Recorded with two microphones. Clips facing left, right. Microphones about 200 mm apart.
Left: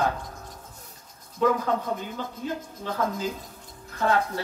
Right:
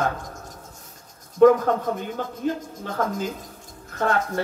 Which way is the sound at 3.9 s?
50° right (ahead or behind).